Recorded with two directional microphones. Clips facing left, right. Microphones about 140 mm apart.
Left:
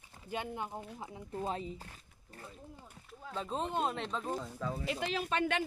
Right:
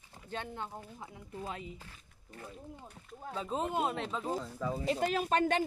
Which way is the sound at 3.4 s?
5° right (ahead or behind).